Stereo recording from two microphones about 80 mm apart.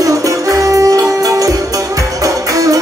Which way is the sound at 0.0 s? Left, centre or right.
Right.